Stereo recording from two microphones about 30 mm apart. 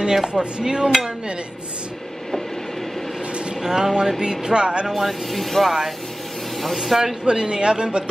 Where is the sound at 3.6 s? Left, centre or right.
Centre.